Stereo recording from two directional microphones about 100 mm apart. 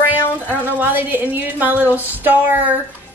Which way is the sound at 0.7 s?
20° right (ahead or behind).